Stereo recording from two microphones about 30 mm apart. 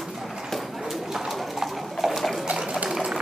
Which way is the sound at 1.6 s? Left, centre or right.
Centre.